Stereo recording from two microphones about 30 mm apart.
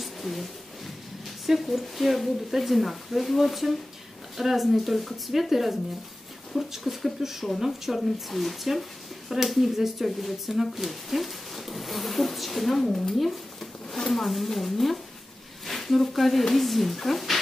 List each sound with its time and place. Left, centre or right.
0.0 s a sound: centre
1.4 s speech: centre
6.8 s speech: centre
12.8 s speech: left
13.2 s speech: centre
13.8 s a sound: centre
14.1 s speech: centre